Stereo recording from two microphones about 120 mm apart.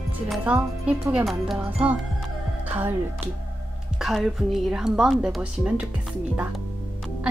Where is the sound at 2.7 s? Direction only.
15° right (ahead or behind).